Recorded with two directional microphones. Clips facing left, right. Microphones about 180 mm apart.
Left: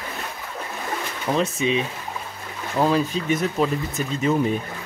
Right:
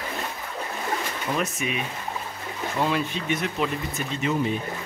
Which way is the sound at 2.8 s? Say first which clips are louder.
Left 6 dB; 40° left (ahead or behind).